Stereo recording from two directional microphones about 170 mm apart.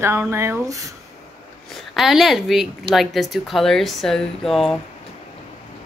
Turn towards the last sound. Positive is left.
turn(degrees=0)  # may be behind; listen again after turning